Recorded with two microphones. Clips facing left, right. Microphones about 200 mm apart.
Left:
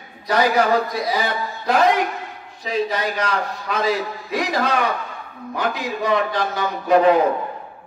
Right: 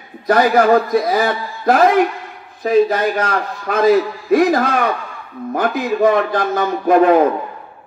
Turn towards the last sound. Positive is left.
turn(degrees=-50)  # may be behind; listen again after turning